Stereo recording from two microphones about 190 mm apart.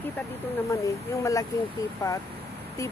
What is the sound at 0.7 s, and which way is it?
Speech, 15° left (ahead or behind).